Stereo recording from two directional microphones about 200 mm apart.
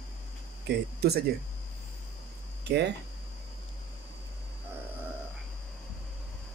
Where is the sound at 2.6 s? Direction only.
60° right (ahead or behind).